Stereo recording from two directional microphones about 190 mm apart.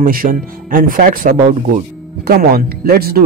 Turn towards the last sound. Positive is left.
turn(degrees=-55)  # may be behind; listen again after turning